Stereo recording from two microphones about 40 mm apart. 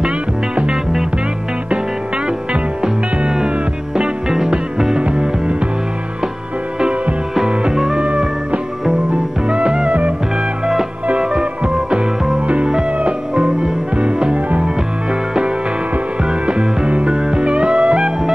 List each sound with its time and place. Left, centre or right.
2.8 s music: right
7.7 s music: centre
8.0 s music: right
11.1 s music: right
16.3 s music: right